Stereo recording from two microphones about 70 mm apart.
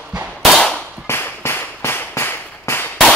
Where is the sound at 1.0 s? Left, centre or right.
Left.